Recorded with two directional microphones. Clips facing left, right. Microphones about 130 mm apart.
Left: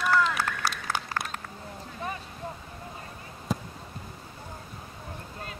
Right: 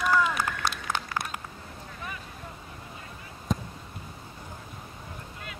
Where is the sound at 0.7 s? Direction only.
5° left (ahead or behind).